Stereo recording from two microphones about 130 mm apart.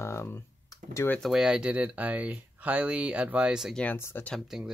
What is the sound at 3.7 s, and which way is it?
Speech, 10° left (ahead or behind).